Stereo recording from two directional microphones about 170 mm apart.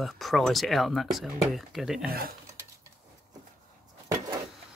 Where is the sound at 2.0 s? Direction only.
60° right (ahead or behind).